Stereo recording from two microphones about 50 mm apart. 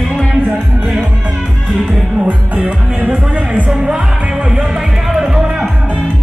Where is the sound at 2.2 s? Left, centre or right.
Right; by 5.6 s centre.